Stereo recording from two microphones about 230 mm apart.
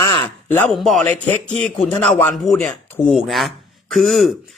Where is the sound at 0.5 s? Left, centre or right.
Centre.